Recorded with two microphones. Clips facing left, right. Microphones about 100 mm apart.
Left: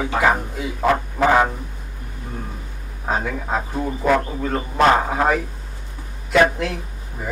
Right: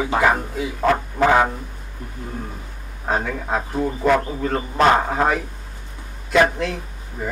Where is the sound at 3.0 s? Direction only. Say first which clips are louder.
Even; centre (ahead or behind).